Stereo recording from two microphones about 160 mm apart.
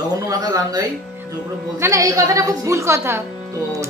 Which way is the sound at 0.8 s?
15° right (ahead or behind).